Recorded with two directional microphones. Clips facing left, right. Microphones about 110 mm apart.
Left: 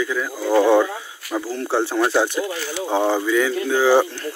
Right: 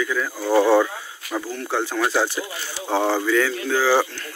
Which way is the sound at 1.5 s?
30° left (ahead or behind).